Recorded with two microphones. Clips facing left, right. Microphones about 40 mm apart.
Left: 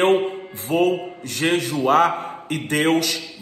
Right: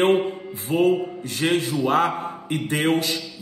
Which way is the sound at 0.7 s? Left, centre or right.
Left.